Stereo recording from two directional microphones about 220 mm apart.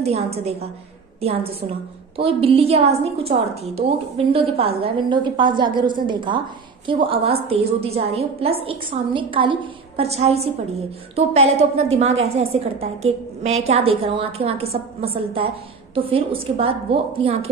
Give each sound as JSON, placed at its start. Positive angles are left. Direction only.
{"t": 0.0, "sound": "a woman's voice", "side_deg": -30}